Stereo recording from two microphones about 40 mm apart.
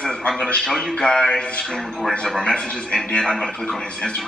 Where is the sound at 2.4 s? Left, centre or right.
Left.